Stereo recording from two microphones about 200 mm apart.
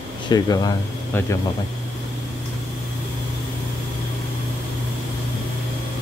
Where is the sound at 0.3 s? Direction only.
20° left (ahead or behind).